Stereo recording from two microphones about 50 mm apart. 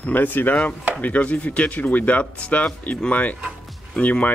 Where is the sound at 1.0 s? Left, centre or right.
Left.